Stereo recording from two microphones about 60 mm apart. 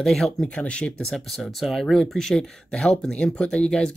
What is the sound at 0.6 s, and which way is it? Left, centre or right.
Speech, centre.